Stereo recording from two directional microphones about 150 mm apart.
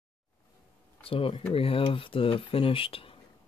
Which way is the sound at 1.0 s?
35° left (ahead or behind).